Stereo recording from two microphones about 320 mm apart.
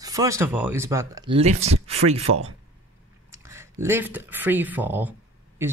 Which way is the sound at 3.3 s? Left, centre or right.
Centre.